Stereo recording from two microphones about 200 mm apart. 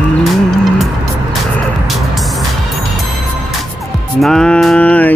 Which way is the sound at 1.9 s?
Centre (ahead or behind).